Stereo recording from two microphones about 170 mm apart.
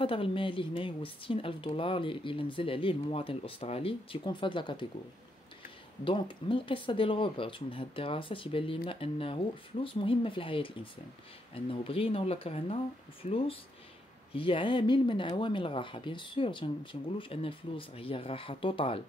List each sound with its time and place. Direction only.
0.0 s speech: 30° left (ahead or behind)
6.0 s speech: 30° left (ahead or behind)